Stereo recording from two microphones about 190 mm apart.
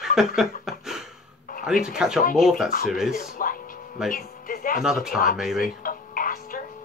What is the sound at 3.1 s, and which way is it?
Music, 45° left (ahead or behind).